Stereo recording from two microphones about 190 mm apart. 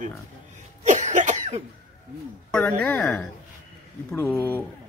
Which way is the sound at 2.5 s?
10° left (ahead or behind).